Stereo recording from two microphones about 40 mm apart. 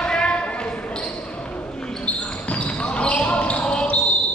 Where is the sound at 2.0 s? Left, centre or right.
Left.